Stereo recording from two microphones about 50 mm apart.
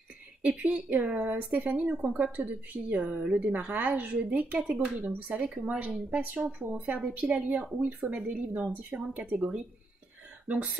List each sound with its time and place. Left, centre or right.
0.4 s speech: right
2.0 s speech: right
2.3 s speech: right
7.0 s a woman's voice: centre
7.2 s speech: right